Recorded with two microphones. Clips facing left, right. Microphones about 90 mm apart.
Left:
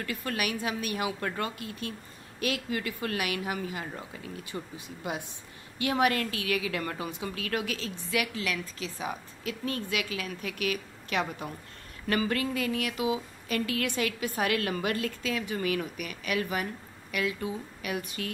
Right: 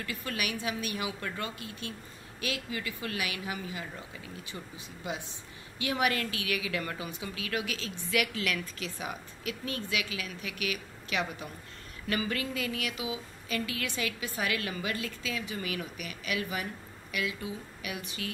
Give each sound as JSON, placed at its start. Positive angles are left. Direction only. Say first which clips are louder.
{"t": 0.0, "sound": "speech", "louder": "left 3 dB", "side_deg": 45}